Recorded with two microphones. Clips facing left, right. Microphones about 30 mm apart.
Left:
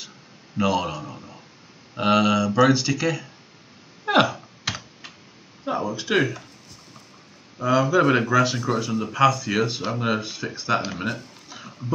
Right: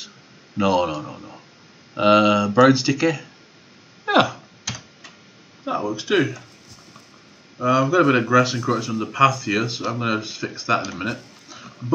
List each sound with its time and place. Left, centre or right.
0.6 s a man's voice: centre
4.0 s a sound: centre
4.7 s computer keyboard: left
5.7 s speech: centre
7.5 s speech: centre